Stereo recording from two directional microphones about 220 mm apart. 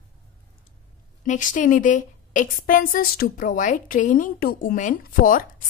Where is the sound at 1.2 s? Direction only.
35° left (ahead or behind).